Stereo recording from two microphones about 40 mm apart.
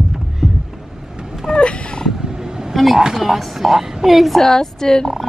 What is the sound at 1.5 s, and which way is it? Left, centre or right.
Cat, centre.